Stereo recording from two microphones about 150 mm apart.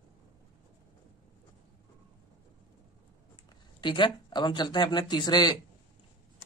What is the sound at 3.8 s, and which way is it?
Speech, 30° left (ahead or behind).